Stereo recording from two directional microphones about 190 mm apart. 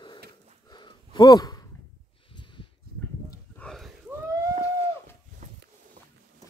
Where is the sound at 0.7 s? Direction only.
25° left (ahead or behind).